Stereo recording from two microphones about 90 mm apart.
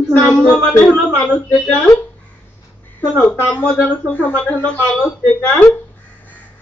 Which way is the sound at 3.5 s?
20° left (ahead or behind).